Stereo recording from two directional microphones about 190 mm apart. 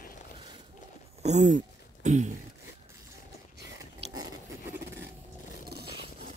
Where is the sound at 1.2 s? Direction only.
35° right (ahead or behind).